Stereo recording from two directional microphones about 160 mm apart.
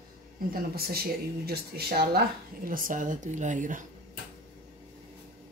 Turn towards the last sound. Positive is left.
turn(degrees=-55)  # may be behind; listen again after turning